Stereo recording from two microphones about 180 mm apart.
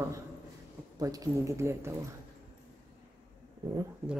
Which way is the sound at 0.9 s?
20° right (ahead or behind).